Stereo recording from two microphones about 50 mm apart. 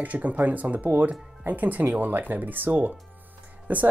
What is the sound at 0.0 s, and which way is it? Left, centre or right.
Speech, right.